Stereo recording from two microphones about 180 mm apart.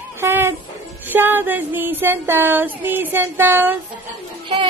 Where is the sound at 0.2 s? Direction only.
15° right (ahead or behind).